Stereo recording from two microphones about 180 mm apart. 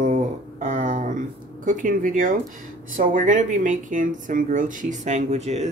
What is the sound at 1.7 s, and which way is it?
Speech, 50° right (ahead or behind).